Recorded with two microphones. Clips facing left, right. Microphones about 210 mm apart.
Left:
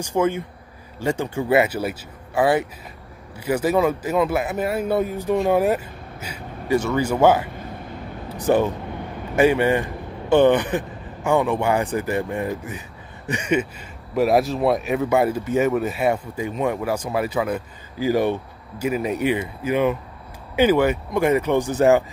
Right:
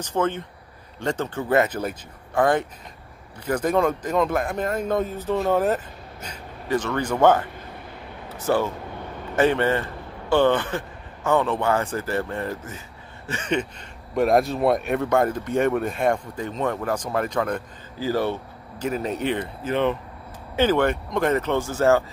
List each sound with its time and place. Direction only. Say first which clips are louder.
0.0 s speech: left 3 dB; 10° left (ahead or behind)